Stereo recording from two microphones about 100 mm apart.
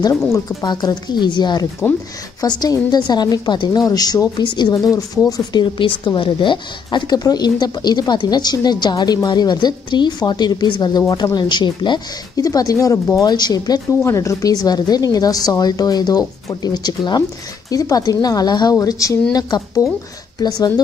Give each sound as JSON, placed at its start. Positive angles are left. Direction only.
{"t": 0.3, "sound": "a woman's voice", "side_deg": 35}
{"t": 12.4, "sound": "a woman's voice", "side_deg": 35}
{"t": 14.0, "sound": "a woman's voice", "side_deg": 30}
{"t": 20.3, "sound": "a woman's voice", "side_deg": 40}